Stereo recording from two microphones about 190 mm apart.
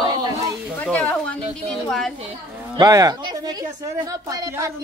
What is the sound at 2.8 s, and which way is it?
A woman's voice, 20° right (ahead or behind).